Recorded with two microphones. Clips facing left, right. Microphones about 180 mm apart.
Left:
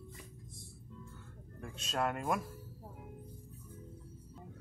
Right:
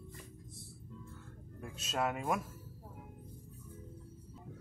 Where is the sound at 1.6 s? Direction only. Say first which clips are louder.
Even; 5° right (ahead or behind).